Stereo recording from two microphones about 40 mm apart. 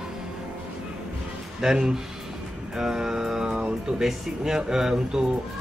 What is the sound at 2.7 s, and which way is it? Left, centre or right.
Mantra, centre.